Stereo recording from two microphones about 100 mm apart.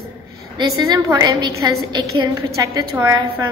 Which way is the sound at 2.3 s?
35° right (ahead or behind).